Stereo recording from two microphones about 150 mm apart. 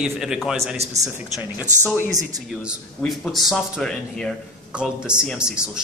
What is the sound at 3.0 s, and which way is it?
Speech, centre (ahead or behind).